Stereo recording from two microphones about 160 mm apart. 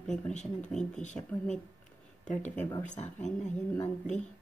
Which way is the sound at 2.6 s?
15° left (ahead or behind).